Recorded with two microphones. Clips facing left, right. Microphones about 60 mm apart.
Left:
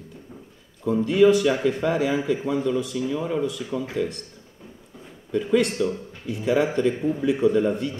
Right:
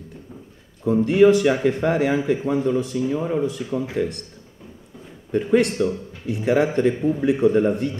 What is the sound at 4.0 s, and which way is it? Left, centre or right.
Speech, right.